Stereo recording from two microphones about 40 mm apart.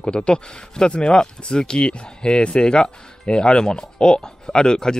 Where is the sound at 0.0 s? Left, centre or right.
Left.